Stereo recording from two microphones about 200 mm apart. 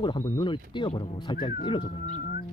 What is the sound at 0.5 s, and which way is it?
Speech, 25° left (ahead or behind).